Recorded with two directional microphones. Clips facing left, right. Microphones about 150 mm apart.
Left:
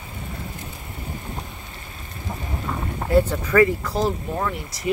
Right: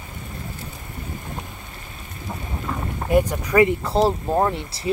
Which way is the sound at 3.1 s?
15° right (ahead or behind).